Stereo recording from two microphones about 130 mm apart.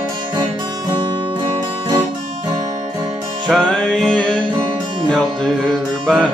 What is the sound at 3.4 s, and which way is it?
Music, centre (ahead or behind).